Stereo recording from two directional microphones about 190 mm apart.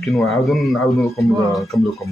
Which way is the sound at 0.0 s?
Centre (ahead or behind).